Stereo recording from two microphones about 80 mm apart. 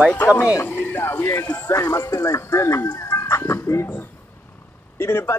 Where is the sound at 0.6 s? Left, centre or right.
Left.